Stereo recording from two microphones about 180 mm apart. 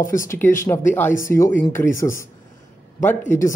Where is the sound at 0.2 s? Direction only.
15° left (ahead or behind).